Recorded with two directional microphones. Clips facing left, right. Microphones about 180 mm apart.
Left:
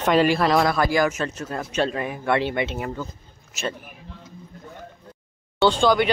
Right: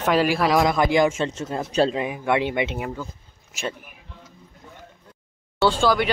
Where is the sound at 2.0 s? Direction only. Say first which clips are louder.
Even; 15° right (ahead or behind).